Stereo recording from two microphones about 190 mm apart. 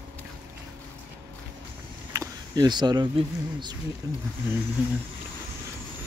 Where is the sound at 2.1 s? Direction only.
20° right (ahead or behind).